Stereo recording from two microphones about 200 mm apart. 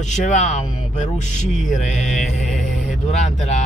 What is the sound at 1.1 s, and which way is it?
Mantra, 5° left (ahead or behind).